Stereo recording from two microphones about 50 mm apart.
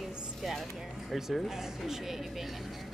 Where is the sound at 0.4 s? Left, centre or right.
Centre.